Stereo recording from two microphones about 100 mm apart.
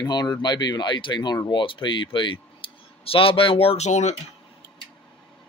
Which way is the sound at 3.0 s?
65° left (ahead or behind).